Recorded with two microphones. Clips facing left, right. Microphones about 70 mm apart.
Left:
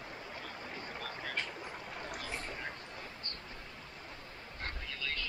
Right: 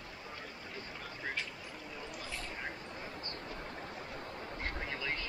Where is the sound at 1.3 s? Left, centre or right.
Left.